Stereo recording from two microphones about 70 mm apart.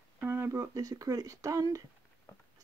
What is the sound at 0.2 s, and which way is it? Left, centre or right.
Speech, right.